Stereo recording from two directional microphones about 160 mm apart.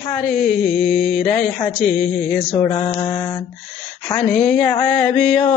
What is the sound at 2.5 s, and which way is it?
Mantra, 35° left (ahead or behind).